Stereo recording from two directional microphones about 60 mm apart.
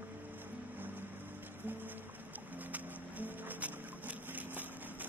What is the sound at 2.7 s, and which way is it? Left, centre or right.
Music, right.